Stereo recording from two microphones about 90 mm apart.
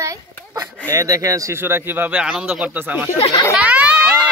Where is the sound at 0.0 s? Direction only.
35° right (ahead or behind).